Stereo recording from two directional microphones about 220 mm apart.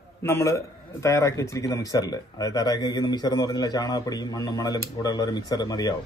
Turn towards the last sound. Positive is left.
turn(degrees=15)  # may be behind; listen again after turning